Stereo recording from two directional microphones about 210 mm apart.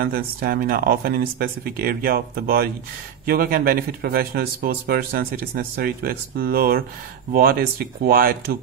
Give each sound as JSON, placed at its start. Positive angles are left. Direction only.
{"t": 0.0, "sound": "speech", "side_deg": -45}